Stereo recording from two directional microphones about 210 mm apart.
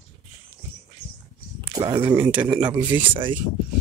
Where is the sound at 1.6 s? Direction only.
20° right (ahead or behind).